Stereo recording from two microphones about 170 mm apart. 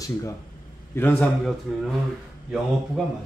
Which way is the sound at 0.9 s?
10° left (ahead or behind).